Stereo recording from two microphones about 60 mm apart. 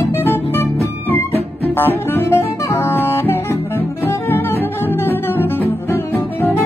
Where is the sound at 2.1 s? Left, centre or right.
Left.